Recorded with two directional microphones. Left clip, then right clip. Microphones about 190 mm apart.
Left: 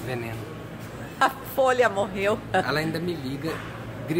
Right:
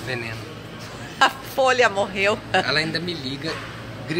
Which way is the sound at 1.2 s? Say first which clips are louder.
Right 3 dB; 5° right (ahead or behind).